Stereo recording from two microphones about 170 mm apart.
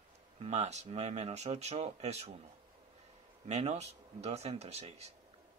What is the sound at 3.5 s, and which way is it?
Speech, 40° right (ahead or behind).